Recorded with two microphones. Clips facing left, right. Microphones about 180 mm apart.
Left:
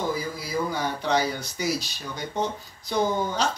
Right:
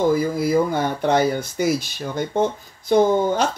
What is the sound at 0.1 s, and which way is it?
Speech, 55° right (ahead or behind).